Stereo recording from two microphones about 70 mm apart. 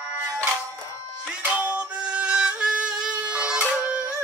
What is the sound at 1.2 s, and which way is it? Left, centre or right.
Music, centre.